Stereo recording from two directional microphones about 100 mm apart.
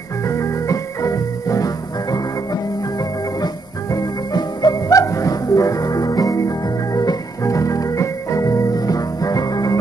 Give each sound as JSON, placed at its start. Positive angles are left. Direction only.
{"t": 0.3, "sound": "music", "side_deg": 30}
{"t": 3.9, "sound": "music", "side_deg": 45}